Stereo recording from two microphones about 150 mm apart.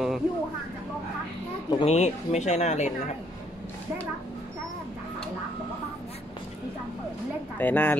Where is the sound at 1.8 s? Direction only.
45° left (ahead or behind).